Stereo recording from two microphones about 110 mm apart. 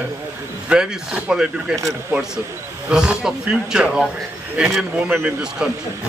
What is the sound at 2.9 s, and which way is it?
A man's voice, 5° right (ahead or behind).